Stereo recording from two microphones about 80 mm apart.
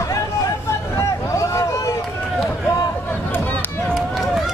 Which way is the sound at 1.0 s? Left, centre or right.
Left.